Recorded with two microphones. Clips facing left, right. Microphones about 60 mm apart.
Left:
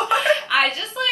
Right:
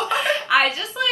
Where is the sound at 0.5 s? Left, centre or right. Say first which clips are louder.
Right 5 dB; centre.